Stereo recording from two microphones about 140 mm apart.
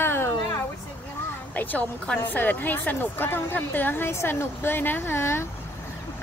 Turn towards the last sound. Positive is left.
turn(degrees=20)  # may be behind; listen again after turning